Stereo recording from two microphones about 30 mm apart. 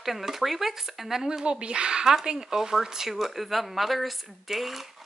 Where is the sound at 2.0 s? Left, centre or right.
Centre.